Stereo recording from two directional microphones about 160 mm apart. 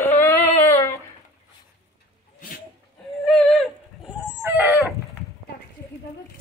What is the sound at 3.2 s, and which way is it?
Dog, 5° left (ahead or behind).